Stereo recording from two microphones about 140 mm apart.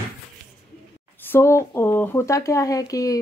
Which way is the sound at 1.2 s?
15° left (ahead or behind).